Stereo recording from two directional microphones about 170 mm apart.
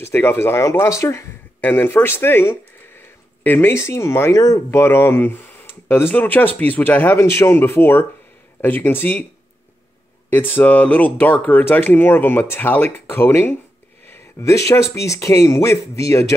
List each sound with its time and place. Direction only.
0.0 s speech: 15° left (ahead or behind)
10.3 s speech: 10° left (ahead or behind)